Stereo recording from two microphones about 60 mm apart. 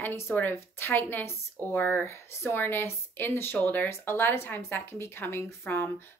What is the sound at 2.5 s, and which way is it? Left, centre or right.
Speech, left.